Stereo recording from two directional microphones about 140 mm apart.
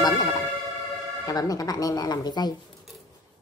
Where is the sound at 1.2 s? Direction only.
25° left (ahead or behind).